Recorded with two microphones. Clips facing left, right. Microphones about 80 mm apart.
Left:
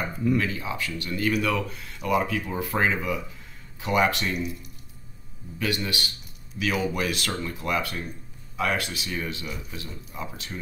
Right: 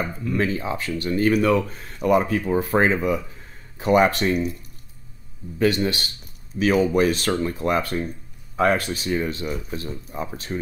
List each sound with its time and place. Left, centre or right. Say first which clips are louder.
0.4 s speech: right 5 dB; right
5.6 s speech: right 8 dB; right